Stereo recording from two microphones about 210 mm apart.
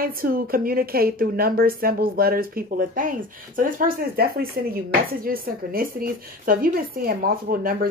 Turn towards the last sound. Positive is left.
turn(degrees=-45)  # may be behind; listen again after turning